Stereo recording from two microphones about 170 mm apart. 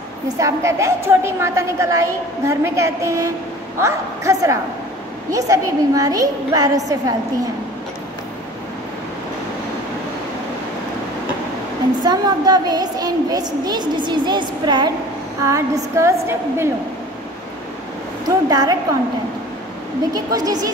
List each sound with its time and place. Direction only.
0.4 s a woman's voice: 15° right (ahead or behind)
12.0 s a woman's voice: 25° right (ahead or behind)
18.5 s a woman's voice: 20° right (ahead or behind)
20.2 s a woman's voice: 20° right (ahead or behind)